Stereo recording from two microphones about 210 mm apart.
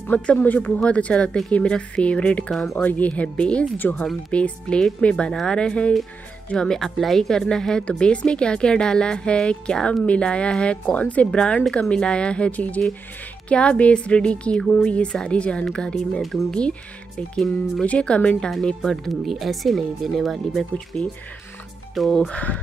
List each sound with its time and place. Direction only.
0.1 s speech: 5° left (ahead or behind)